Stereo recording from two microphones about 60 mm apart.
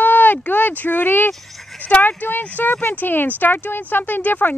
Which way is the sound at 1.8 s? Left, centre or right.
Left.